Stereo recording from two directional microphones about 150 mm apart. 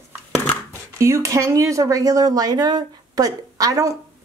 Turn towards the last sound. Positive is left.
turn(degrees=-25)  # may be behind; listen again after turning